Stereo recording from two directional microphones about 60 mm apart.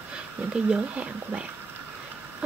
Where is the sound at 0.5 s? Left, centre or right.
Centre.